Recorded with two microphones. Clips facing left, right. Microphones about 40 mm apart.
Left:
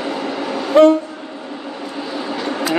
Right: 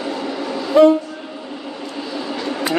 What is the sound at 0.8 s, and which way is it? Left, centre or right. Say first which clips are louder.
Train: left 1 dB; left.